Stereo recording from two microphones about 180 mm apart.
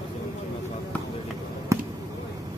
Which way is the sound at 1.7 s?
15° right (ahead or behind).